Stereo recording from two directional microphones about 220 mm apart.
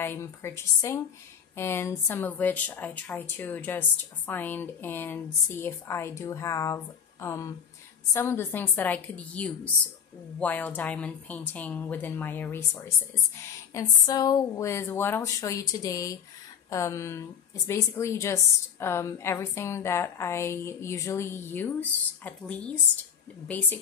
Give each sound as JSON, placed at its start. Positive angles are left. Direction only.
{"t": 0.0, "sound": "speech", "side_deg": 10}